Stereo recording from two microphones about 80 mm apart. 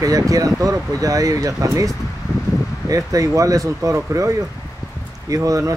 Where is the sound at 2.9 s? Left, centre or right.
Right.